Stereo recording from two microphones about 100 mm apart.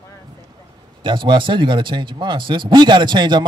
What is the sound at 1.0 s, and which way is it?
Speech, 55° right (ahead or behind).